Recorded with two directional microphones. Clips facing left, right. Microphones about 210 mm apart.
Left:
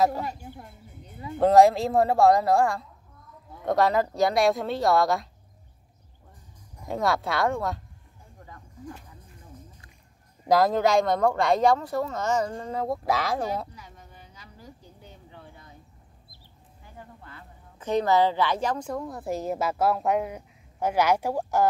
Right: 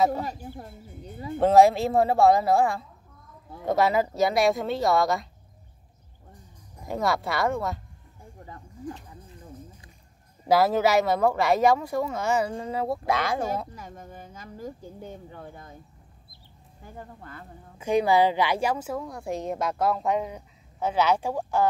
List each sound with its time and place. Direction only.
0.2 s speech: 35° right (ahead or behind)
1.4 s a woman's voice: centre (ahead or behind)
6.9 s a woman's voice: centre (ahead or behind)
10.5 s a woman's voice: 5° right (ahead or behind)
13.7 s speech: 50° right (ahead or behind)
16.8 s speech: 45° right (ahead or behind)
17.7 s a woman's voice: 10° right (ahead or behind); by 21.6 s 10° left (ahead or behind)